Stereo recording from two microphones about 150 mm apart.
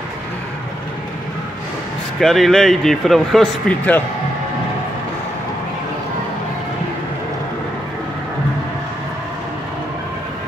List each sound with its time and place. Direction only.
2.1 s speech: centre (ahead or behind)